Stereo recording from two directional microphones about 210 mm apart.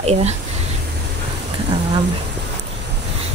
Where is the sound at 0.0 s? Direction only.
30° right (ahead or behind).